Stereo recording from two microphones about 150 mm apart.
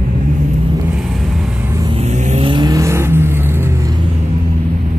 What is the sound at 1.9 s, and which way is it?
Vehicle, 50° right (ahead or behind).